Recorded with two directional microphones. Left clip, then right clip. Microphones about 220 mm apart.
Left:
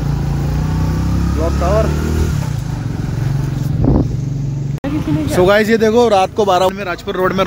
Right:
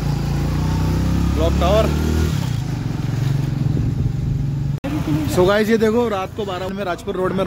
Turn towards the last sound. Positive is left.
turn(degrees=0)  # may be behind; listen again after turning